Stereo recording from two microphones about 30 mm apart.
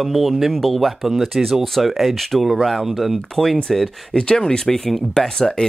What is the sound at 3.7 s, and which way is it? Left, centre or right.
Speech, centre.